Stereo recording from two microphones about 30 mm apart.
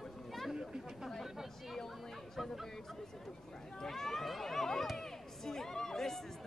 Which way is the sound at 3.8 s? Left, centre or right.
Centre.